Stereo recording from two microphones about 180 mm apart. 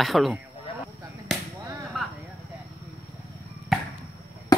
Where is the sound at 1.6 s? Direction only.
15° right (ahead or behind).